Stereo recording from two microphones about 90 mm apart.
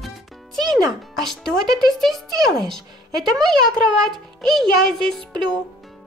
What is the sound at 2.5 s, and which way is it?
Speech, 5° left (ahead or behind).